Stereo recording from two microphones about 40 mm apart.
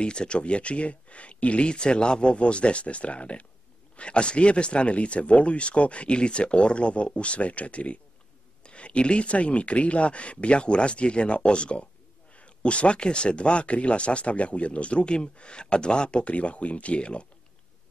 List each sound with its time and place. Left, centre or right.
0.0 s speech: left